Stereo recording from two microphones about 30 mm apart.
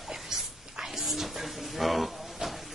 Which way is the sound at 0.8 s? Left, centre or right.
Centre.